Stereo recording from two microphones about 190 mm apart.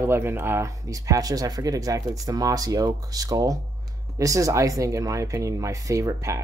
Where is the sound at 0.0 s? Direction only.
10° right (ahead or behind).